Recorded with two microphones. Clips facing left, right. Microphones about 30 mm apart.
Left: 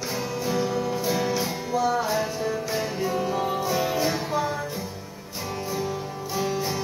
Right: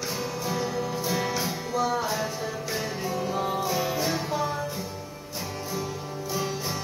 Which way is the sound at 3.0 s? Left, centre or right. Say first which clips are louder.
Left 1 dB; centre.